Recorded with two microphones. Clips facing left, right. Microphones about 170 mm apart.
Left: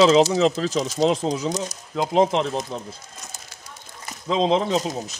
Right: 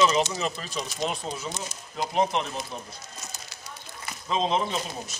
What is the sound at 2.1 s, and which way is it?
Speech, 90° left.